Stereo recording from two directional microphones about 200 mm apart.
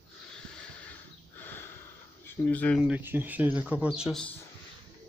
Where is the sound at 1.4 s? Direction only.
10° left (ahead or behind).